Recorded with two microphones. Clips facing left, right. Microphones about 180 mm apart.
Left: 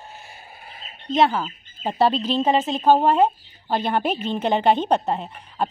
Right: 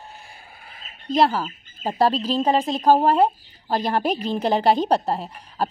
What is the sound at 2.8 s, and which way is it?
Speech, 5° right (ahead or behind).